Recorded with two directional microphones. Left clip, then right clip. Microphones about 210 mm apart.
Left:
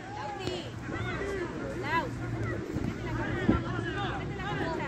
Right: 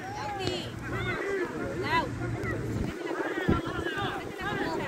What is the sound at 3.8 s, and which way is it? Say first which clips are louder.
Vehicle: right 2 dB; 50° left (ahead or behind).